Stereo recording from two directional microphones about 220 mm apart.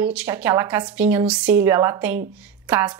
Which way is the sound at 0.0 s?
5° right (ahead or behind).